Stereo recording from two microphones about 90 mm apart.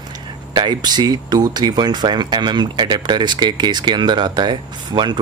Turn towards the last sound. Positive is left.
turn(degrees=-55)  # may be behind; listen again after turning